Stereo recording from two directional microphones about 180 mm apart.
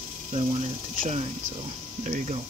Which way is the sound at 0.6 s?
45° right (ahead or behind).